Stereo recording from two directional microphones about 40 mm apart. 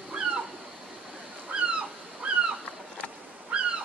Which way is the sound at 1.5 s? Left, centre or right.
Right.